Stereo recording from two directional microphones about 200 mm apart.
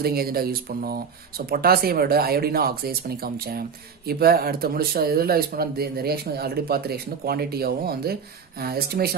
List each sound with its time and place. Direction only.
0.0 s speech: 50° right (ahead or behind)